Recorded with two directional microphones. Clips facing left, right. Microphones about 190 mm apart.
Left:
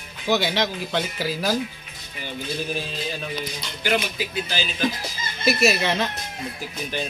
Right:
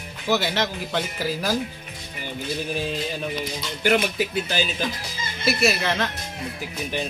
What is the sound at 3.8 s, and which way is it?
Speech, 60° right (ahead or behind).